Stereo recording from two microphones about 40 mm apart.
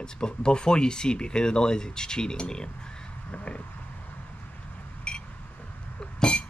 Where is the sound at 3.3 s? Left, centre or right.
Left.